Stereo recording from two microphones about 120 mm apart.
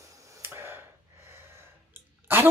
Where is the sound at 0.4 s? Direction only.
20° right (ahead or behind).